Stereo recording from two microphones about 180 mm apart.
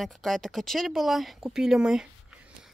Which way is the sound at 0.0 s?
Centre (ahead or behind).